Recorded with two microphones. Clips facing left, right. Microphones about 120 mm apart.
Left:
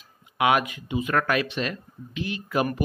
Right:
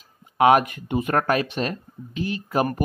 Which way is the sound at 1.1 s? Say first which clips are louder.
Right 2 dB; 40° right (ahead or behind).